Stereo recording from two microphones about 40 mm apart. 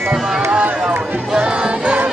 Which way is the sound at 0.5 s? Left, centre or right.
Right.